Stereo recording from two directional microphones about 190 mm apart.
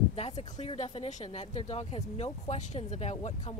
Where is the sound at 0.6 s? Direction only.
35° left (ahead or behind).